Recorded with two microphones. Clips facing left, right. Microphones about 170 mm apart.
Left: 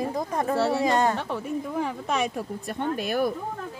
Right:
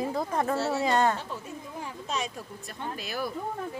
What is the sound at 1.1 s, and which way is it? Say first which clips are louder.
Speech: left 8 dB; 65° left (ahead or behind).